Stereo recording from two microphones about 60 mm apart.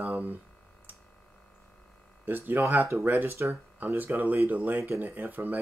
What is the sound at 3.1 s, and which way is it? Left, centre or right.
Speech, right.